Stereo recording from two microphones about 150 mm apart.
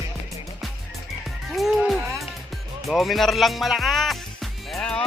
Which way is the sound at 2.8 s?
Centre (ahead or behind).